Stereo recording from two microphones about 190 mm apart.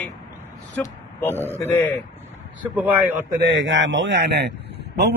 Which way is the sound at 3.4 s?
70° right (ahead or behind).